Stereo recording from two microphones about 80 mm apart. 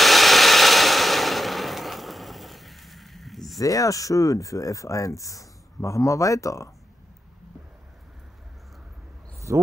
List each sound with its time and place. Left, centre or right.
0.0 s a sound: centre
3.5 s speech: left
9.5 s speech: right